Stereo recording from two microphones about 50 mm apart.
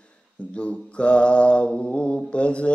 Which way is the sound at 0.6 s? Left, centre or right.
Left.